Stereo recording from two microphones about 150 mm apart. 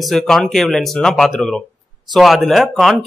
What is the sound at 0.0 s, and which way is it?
Speech, centre (ahead or behind).